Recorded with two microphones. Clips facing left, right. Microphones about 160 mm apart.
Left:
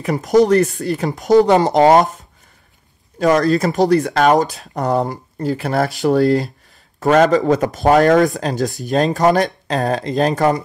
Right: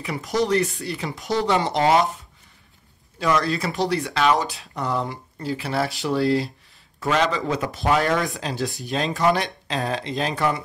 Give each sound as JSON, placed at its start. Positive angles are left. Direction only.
{"t": 0.0, "sound": "speech", "side_deg": 45}
{"t": 3.2, "sound": "speech", "side_deg": 45}